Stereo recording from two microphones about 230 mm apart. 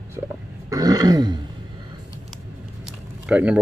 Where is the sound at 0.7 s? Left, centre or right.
Centre.